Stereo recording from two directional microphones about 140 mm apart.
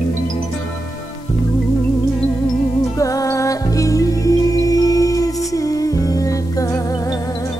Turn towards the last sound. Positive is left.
turn(degrees=25)  # may be behind; listen again after turning